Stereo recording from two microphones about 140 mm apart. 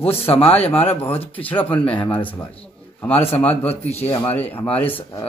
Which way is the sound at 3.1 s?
45° left (ahead or behind).